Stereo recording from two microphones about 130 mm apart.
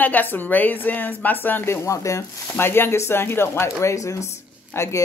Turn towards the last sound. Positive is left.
turn(degrees=20)  # may be behind; listen again after turning